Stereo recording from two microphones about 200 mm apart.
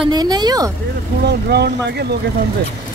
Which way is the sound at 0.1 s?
20° right (ahead or behind).